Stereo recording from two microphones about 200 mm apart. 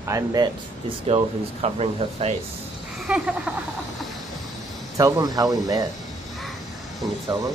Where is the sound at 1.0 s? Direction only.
30° right (ahead or behind).